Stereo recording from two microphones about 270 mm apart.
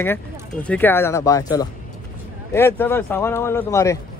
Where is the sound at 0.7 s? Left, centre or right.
Centre.